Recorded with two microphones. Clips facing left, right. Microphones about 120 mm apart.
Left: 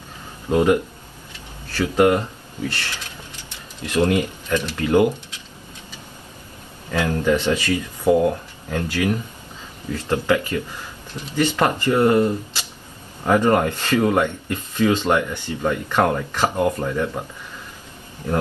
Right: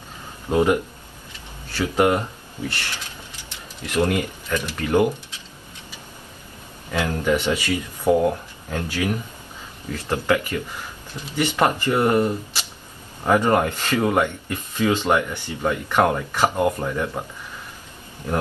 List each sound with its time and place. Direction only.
0.5 s speech: 15° right (ahead or behind)
4.1 s speech: 20° left (ahead or behind)
6.9 s speech: 10° right (ahead or behind)